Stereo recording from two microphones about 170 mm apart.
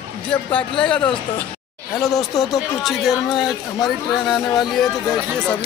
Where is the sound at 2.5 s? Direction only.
Centre (ahead or behind).